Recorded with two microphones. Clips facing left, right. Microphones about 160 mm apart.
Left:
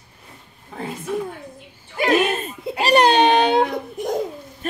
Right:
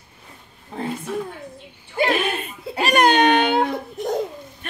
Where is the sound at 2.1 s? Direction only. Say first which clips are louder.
Left 4 dB; 40° left (ahead or behind).